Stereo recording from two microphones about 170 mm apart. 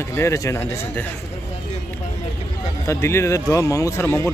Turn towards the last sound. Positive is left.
turn(degrees=15)  # may be behind; listen again after turning